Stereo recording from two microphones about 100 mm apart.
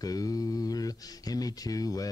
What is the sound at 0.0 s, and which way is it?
Speech, 35° left (ahead or behind).